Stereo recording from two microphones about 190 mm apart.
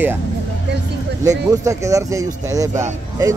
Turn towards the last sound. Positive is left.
turn(degrees=-15)  # may be behind; listen again after turning